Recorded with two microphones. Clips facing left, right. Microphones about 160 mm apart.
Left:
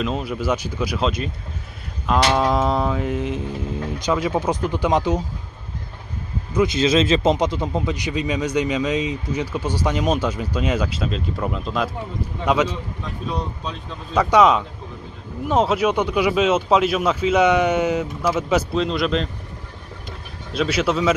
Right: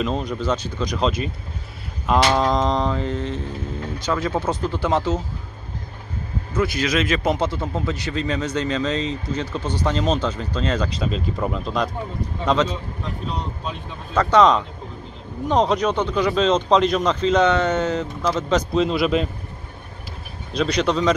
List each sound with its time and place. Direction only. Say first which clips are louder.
0.0 s speech: even; 5° left (ahead or behind)
6.5 s speech: left 4 dB; 20° left (ahead or behind)
14.1 s speech: even; 10° left (ahead or behind)
20.5 s speech: even; 5° left (ahead or behind)